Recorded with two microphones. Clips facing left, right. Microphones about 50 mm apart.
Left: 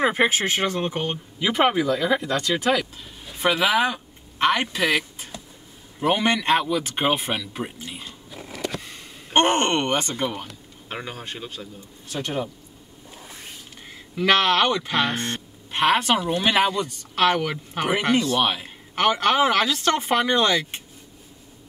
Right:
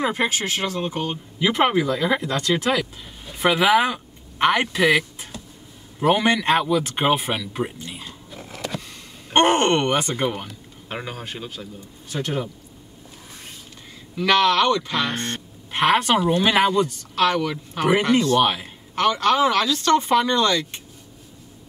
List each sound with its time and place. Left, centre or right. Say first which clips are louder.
0.0 s speech: left 2 dB; centre
1.4 s speech: right 1 dB; centre
14.1 s speech: right 1 dB; centre
17.1 s speech: left 2 dB; centre
18.9 s speech: right 1 dB; centre